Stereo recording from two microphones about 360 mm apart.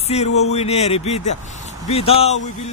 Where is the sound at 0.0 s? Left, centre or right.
Centre.